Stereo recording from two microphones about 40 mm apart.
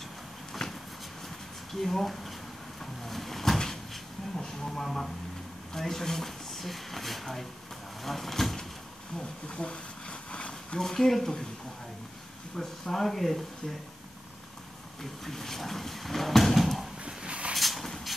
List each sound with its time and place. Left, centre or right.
0.5 s a sound: centre
1.8 s speech: centre
3.1 s cupboard open or close: centre
4.4 s a sound: centre
5.8 s speech: centre
8.0 s vehicle: centre
9.2 s a sound: left
10.8 s speech: centre
12.5 s speech: centre
15.2 s speech: centre
17.0 s a sound: right
17.6 s vehicle: centre